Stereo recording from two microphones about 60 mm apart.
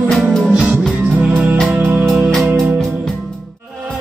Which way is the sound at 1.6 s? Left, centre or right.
Right.